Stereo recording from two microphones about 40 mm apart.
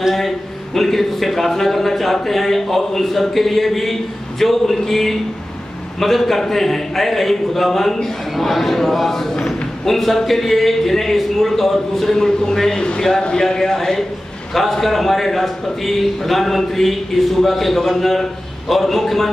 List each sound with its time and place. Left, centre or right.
0.7 s a man's voice: centre; by 13.1 s left
13.4 s a man's voice: centre